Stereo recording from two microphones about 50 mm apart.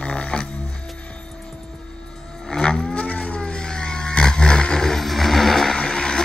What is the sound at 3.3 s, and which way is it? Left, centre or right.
Vehicle, centre.